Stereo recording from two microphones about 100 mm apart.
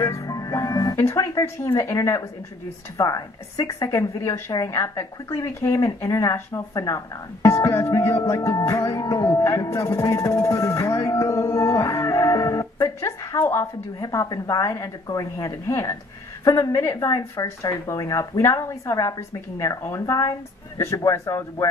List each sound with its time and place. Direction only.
0.0 s speech: 30° left (ahead or behind)